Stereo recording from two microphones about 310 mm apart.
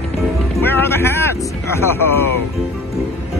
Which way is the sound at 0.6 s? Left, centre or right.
Centre.